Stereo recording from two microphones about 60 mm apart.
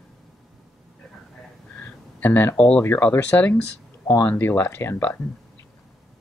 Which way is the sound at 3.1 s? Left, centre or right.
Left.